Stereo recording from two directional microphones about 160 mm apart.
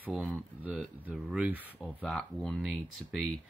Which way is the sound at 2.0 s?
5° left (ahead or behind).